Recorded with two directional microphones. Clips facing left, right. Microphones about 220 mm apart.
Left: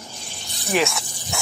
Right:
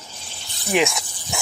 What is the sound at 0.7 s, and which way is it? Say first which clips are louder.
Speech: right 1 dB; 15° right (ahead or behind).